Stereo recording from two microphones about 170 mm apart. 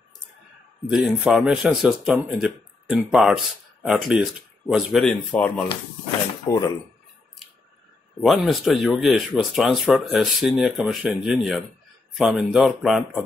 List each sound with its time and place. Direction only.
0.8 s speech: centre (ahead or behind)
6.4 s speech: 20° left (ahead or behind)
8.2 s speech: centre (ahead or behind)